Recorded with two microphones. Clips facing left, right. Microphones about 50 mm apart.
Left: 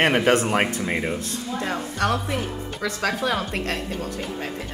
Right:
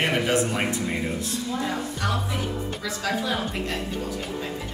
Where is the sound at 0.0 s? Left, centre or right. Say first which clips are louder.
Left 4 dB; left.